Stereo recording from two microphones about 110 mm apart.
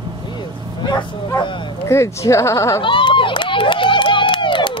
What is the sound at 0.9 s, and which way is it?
Bow-wow, 45° left (ahead or behind).